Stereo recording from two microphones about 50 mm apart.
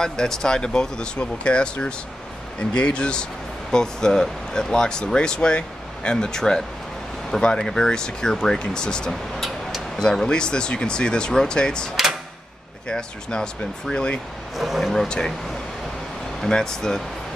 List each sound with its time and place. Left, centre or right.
0.0 s speech: centre
14.6 s speech: centre
15.0 s speech: centre
16.3 s speech: centre